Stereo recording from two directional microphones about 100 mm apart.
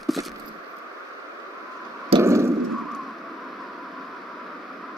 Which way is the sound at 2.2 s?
30° right (ahead or behind).